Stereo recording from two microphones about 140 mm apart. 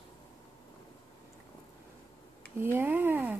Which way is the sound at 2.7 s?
15° right (ahead or behind).